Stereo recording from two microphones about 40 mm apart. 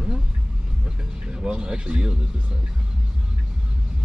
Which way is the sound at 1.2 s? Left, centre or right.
Right.